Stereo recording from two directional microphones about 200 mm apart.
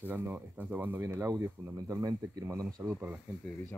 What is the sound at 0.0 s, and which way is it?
Speech, 10° right (ahead or behind).